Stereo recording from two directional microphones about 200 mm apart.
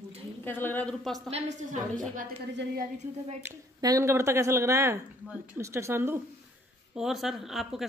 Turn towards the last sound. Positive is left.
turn(degrees=0)  # may be behind; listen again after turning